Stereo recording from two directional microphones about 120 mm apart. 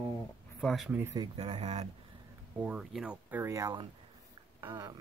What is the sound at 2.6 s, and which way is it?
Speech, 5° right (ahead or behind).